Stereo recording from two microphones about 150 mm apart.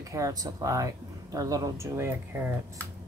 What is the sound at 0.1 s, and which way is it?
Speech, 25° right (ahead or behind).